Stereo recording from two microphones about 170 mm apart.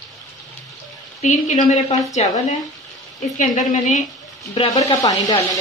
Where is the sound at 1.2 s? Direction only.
45° left (ahead or behind).